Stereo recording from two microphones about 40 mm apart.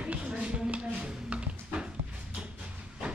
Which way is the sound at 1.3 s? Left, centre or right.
Right.